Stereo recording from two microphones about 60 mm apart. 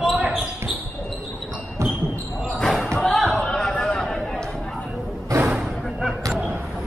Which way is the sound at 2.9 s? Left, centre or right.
Centre.